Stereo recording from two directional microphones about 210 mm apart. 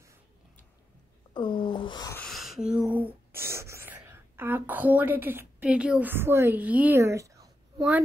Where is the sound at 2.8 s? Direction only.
10° right (ahead or behind).